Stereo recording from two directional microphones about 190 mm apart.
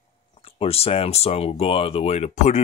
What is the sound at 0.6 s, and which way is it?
Speech, 30° left (ahead or behind).